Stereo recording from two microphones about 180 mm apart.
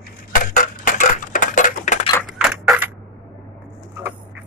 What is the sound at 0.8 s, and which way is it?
Crushing, 45° left (ahead or behind).